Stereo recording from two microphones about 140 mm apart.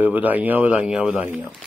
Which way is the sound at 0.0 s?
10° right (ahead or behind).